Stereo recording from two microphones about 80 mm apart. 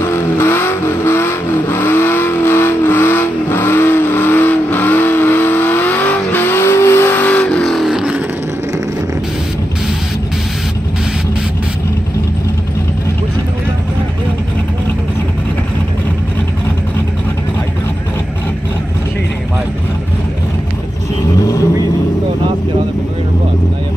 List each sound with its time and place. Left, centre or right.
0.0 s vehicle: left
7.3 s vehicle: centre
7.7 s vehicle: centre
21.4 s vehicle: left